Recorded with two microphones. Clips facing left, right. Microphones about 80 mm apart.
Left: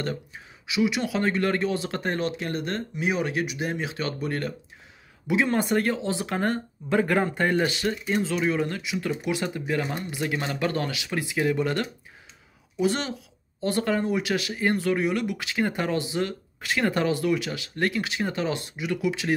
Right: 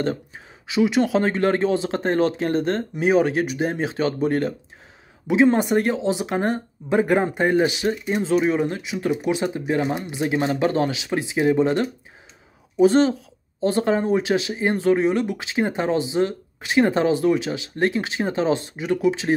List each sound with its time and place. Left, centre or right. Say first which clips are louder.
0.7 s speech: right 6 dB; right